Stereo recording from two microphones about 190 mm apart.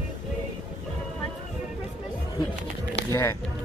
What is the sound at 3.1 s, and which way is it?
Music, 15° left (ahead or behind).